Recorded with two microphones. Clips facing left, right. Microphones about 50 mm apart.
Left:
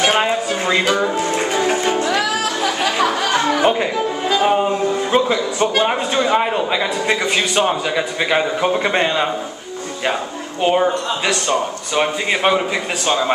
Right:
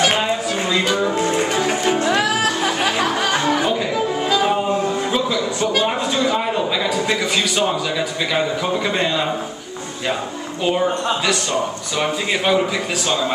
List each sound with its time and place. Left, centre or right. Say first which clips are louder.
0.1 s music: left 2 dB; left
1.2 s music: left 1 dB; centre
2.0 s music: right 1 dB; right
3.2 s music: left 2 dB; centre
5.1 s a man's voice: left 3 dB; left
10.6 s a man's voice: left 3 dB; left